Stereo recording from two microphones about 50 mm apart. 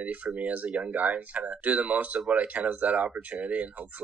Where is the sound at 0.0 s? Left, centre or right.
Right.